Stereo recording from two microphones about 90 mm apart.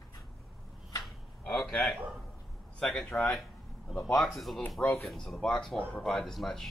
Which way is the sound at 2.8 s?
5° left (ahead or behind).